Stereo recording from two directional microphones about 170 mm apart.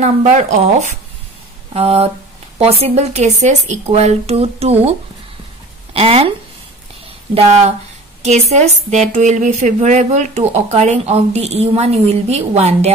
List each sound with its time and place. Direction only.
0.0 s speech: 40° right (ahead or behind)
5.9 s speech: 35° right (ahead or behind)
7.3 s speech: 40° right (ahead or behind)